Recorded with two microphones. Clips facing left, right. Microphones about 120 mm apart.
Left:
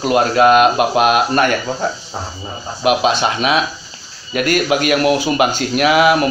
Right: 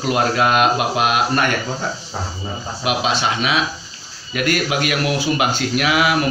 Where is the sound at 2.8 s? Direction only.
50° left (ahead or behind).